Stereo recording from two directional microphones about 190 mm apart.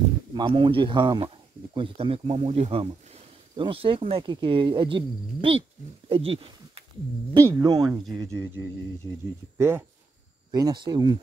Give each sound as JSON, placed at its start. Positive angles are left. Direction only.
{"t": 0.3, "sound": "speech", "side_deg": -25}
{"t": 6.0, "sound": "a sound", "side_deg": -30}
{"t": 7.5, "sound": "speech", "side_deg": -20}